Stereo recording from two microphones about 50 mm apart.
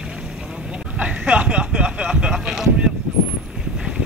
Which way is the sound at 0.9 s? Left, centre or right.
Right.